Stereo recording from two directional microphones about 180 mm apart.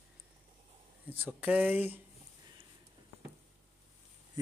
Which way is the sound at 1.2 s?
10° right (ahead or behind).